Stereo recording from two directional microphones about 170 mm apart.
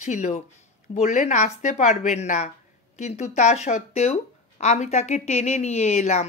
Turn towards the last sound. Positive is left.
turn(degrees=40)  # may be behind; listen again after turning